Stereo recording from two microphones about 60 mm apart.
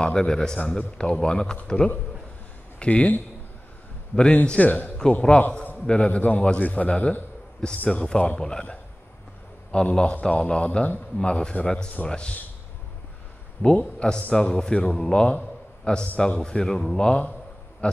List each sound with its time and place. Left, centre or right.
0.0 s a man's voice: centre
4.5 s a man's voice: left
9.7 s a man's voice: centre
13.6 s a man's voice: left
14.3 s a man's voice: centre